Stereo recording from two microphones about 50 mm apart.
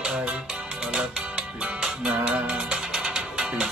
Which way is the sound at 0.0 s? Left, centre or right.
Centre.